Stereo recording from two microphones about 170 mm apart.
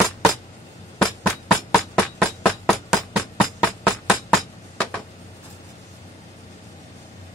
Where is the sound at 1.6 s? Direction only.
20° left (ahead or behind).